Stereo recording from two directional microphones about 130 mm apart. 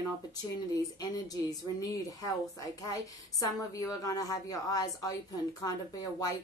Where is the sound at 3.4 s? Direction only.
25° left (ahead or behind).